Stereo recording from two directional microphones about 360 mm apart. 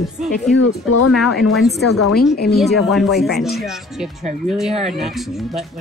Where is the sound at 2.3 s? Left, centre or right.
Left.